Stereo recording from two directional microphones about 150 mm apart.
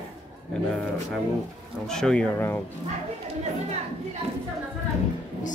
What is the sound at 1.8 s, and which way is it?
Speech, 5° left (ahead or behind).